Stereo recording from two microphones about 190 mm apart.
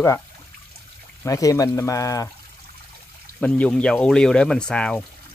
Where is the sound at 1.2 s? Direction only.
15° left (ahead or behind).